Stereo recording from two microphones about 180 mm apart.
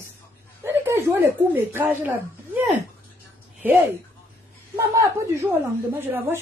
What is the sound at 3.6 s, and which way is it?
Speech, 10° right (ahead or behind).